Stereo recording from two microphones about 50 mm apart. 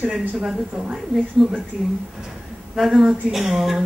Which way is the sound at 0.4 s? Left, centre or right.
Centre.